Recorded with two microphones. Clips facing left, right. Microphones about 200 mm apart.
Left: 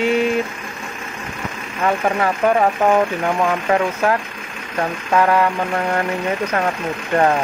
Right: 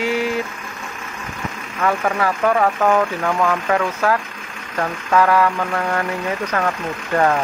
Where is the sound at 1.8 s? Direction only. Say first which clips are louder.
Left 1 dB; 20° left (ahead or behind).